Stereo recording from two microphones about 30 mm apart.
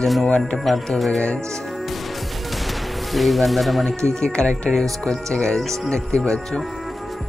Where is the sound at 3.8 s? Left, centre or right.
Left.